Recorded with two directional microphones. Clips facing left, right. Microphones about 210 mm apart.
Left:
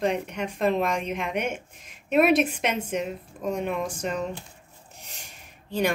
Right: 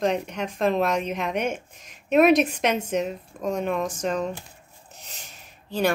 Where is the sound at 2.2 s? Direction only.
5° left (ahead or behind).